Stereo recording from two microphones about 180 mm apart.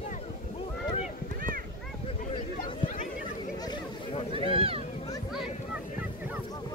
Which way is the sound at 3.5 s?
25° left (ahead or behind).